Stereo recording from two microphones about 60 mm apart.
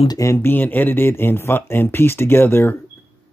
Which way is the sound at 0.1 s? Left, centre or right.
Left.